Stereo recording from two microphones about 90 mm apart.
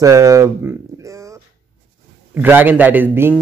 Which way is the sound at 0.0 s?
35° right (ahead or behind).